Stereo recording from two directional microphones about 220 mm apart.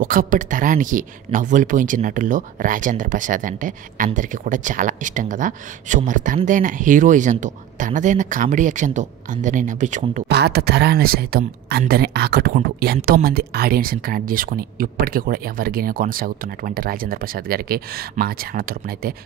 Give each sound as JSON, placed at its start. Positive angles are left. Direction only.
{"t": 0.0, "sound": "speech", "side_deg": -40}
{"t": 10.2, "sound": "speech", "side_deg": -45}